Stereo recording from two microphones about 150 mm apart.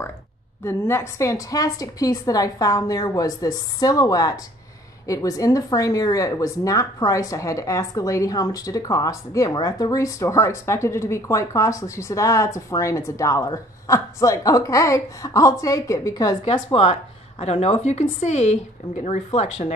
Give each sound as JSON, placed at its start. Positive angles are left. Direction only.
{"t": 0.7, "sound": "speech", "side_deg": 15}
{"t": 16.5, "sound": "a woman's voice", "side_deg": 35}